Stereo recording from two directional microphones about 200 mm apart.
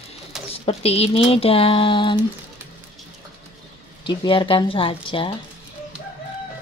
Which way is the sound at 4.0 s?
25° left (ahead or behind).